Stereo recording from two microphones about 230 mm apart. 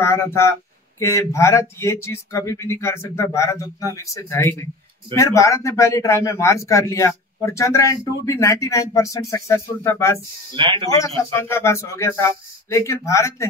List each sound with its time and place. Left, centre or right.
0.0 s a man's voice: centre
10.5 s speech: right
10.9 s a man's voice: centre